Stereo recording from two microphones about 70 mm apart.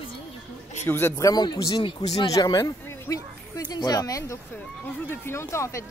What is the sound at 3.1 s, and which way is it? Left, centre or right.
Speech, left.